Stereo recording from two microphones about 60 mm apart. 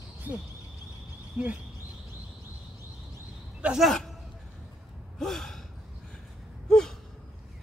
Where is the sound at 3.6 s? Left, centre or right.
Right.